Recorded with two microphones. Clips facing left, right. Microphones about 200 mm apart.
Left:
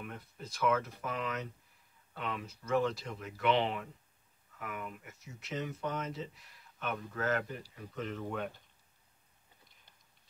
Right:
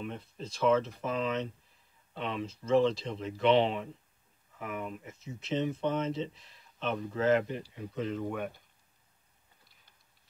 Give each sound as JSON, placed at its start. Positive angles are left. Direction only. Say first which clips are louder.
{"t": 0.0, "sound": "speech", "louder": "right 6 dB", "side_deg": -25}